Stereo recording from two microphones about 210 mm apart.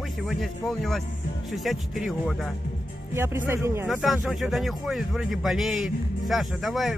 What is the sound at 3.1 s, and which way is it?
Speech, 10° right (ahead or behind).